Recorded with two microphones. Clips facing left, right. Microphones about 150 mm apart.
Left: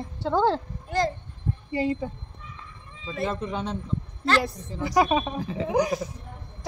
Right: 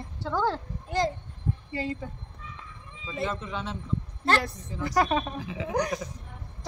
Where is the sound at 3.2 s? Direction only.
40° left (ahead or behind).